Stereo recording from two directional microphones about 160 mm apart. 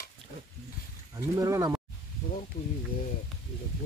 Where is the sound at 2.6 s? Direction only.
65° left (ahead or behind).